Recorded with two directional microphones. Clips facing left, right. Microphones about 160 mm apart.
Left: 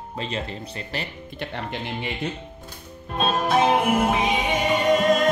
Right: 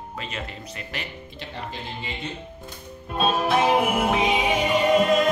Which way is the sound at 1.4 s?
65° left (ahead or behind).